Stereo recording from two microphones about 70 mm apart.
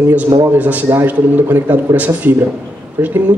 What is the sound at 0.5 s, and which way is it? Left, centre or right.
A man's voice, right.